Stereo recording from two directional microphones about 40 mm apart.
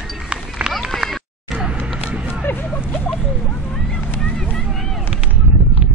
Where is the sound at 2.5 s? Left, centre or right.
Left.